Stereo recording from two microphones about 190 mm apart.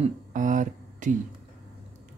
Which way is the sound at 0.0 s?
40° right (ahead or behind).